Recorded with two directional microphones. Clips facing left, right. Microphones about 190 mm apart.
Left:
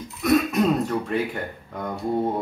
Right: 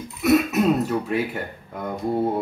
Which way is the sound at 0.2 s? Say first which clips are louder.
Right 1 dB; 5° right (ahead or behind).